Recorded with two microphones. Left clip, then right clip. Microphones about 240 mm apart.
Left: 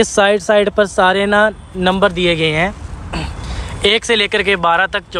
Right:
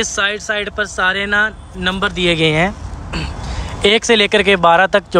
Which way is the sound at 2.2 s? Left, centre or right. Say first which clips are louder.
Even; centre.